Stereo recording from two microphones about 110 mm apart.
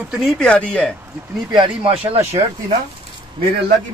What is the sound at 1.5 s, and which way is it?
Speech, 50° right (ahead or behind).